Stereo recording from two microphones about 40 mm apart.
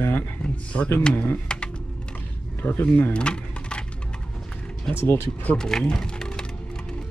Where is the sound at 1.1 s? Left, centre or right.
Left.